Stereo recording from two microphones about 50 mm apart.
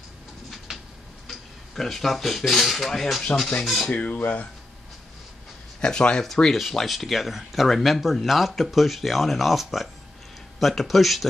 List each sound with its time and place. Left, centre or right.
0.7 s a sound: centre
1.2 s speech: centre
3.9 s speech: left
5.8 s speech: centre
6.2 s speech: centre